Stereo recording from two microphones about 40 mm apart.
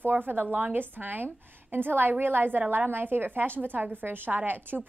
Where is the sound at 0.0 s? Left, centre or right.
Right.